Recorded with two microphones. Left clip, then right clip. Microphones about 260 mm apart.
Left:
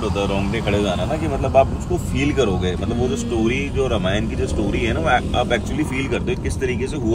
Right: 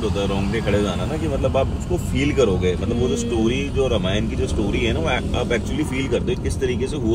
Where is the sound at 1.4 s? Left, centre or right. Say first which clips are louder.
Left 5 dB; left.